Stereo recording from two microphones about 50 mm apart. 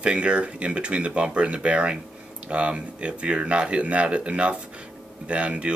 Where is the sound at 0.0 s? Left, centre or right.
Right.